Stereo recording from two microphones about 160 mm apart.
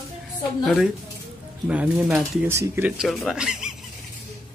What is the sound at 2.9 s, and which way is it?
Speech, 5° right (ahead or behind).